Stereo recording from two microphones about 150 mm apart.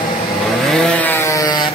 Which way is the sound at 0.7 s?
5° left (ahead or behind).